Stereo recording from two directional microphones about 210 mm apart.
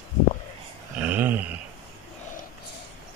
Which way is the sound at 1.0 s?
10° right (ahead or behind).